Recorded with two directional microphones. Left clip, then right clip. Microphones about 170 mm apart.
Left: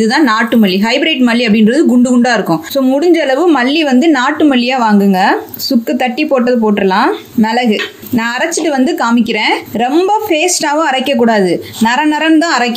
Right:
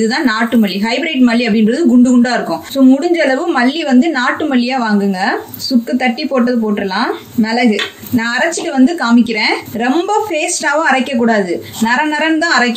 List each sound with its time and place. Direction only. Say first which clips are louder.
1.2 s a woman's voice: left 2 dB; 45° left (ahead or behind)
8.7 s a woman's voice: right 3 dB; 40° left (ahead or behind)
10.9 s a woman's voice: left 2 dB; 45° left (ahead or behind)